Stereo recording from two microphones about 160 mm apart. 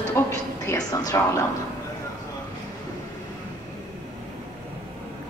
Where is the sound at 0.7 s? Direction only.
20° left (ahead or behind).